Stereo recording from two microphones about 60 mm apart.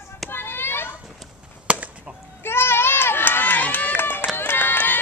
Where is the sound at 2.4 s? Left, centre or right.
Left.